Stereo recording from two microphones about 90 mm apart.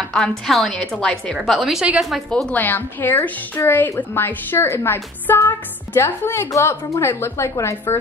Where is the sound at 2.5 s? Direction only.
20° left (ahead or behind).